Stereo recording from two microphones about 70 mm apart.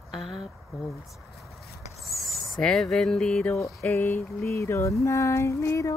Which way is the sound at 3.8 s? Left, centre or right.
Left.